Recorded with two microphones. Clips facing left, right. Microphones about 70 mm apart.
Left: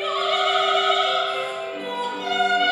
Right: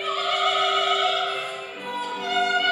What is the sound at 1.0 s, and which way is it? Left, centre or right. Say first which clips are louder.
Music: left 1 dB; left.